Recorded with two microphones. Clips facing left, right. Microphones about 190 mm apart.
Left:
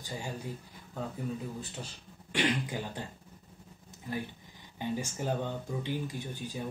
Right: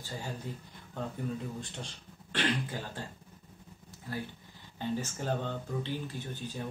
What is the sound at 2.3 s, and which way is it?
Speech, 15° left (ahead or behind).